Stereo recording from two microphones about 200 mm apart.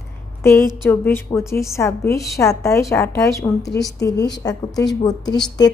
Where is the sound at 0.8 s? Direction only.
10° left (ahead or behind).